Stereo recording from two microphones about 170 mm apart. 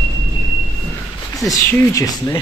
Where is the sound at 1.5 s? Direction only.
15° left (ahead or behind).